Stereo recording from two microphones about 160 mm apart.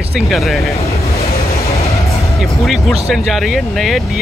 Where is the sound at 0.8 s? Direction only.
40° left (ahead or behind).